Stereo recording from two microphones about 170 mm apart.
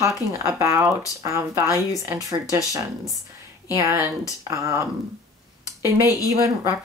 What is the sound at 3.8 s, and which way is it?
Speech, 15° right (ahead or behind).